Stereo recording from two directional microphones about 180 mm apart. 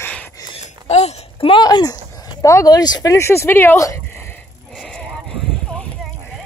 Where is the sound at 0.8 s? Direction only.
35° left (ahead or behind).